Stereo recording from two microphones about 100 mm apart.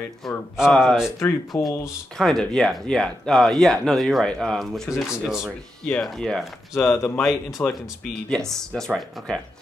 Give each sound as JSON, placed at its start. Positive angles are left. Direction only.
{"t": 0.2, "sound": "speech", "side_deg": 0}
{"t": 1.6, "sound": "speech", "side_deg": 35}
{"t": 2.1, "sound": "speech", "side_deg": 5}
{"t": 6.8, "sound": "speech", "side_deg": 25}
{"t": 7.2, "sound": "speech", "side_deg": 0}